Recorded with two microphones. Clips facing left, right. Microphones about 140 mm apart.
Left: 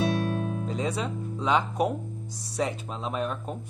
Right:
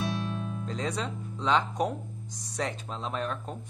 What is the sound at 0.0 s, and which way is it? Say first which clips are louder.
Music: left 6 dB; 60° left (ahead or behind).